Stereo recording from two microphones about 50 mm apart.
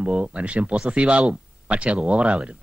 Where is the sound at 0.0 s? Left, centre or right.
Right.